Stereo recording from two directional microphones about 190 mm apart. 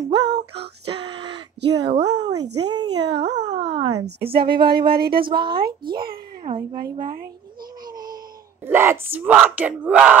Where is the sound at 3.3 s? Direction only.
35° right (ahead or behind).